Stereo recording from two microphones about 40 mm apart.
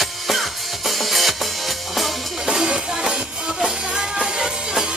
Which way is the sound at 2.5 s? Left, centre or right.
Centre.